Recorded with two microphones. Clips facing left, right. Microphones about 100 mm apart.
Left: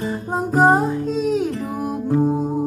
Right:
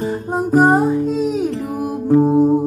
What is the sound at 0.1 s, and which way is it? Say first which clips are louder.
Music: right 6 dB; 5° right (ahead or behind).